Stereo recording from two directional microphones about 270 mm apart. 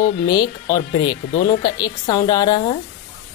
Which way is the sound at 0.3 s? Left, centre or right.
Centre.